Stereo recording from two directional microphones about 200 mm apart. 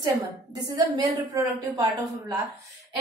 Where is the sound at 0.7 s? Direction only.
20° right (ahead or behind).